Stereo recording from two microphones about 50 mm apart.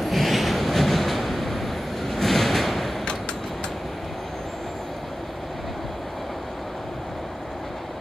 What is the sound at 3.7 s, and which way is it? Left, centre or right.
Vehicle, centre.